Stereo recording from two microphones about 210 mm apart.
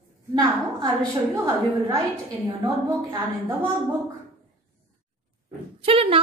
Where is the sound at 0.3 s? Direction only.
20° right (ahead or behind).